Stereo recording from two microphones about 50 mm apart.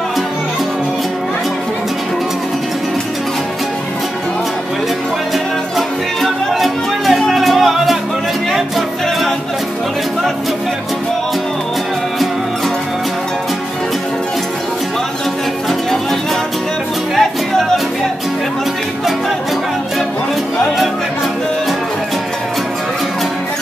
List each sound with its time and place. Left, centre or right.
5.8 s music: centre
17.1 s music: centre